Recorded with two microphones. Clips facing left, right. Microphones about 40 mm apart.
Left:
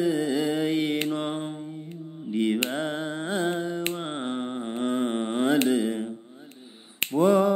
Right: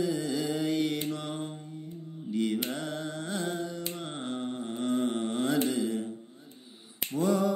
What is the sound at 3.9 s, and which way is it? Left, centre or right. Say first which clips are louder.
Humming: left 5 dB; left.